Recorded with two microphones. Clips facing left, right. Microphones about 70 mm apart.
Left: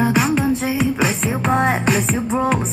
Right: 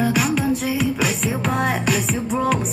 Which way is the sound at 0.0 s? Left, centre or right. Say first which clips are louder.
Left 3 dB; left.